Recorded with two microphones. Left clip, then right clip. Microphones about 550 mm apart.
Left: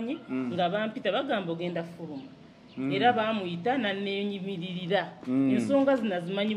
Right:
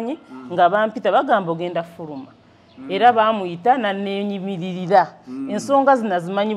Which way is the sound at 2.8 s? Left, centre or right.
Right.